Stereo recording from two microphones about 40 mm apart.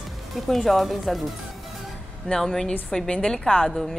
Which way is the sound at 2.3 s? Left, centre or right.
Centre.